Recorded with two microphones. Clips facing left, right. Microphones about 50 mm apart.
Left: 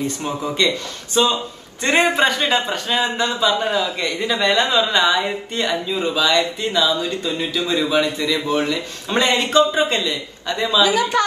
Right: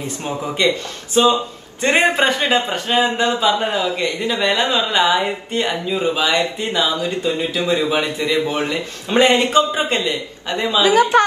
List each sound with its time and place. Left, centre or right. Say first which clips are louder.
0.2 s a woman's voice: right 3 dB; right
6.9 s a woman's voice: right 2 dB; right
9.1 s a man's voice: right 3 dB; right